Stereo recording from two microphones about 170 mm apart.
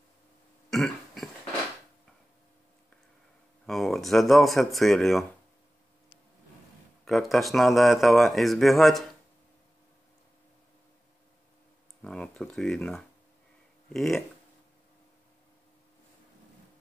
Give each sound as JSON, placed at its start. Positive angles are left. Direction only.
{"t": 0.7, "sound": "burping", "side_deg": 0}
{"t": 3.6, "sound": "speech", "side_deg": 0}
{"t": 7.1, "sound": "speech", "side_deg": 0}
{"t": 12.0, "sound": "speech", "side_deg": 5}